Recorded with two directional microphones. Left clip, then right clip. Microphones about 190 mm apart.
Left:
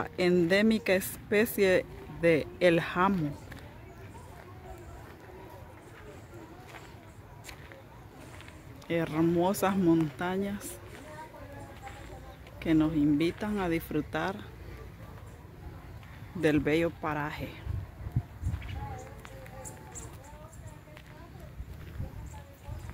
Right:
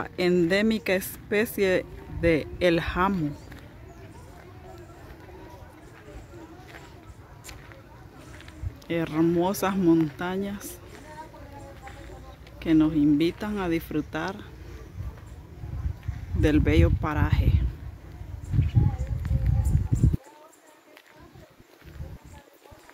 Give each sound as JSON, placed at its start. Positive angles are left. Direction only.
{"t": 0.0, "sound": "speech", "side_deg": -5}
{"t": 8.8, "sound": "speech", "side_deg": -5}
{"t": 12.5, "sound": "speech", "side_deg": -5}
{"t": 16.3, "sound": "speech", "side_deg": -5}
{"t": 18.5, "sound": "a sound", "side_deg": -15}